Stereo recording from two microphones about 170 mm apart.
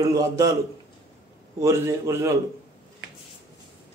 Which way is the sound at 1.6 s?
15° right (ahead or behind).